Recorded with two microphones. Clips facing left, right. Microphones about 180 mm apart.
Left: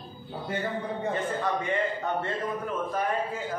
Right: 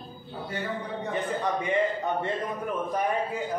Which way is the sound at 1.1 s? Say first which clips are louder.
Right 2 dB; 15° right (ahead or behind).